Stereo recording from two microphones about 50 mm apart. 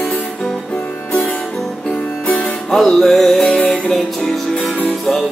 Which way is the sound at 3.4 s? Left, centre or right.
Centre.